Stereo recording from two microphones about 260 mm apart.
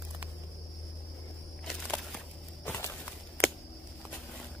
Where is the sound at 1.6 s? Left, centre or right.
Centre.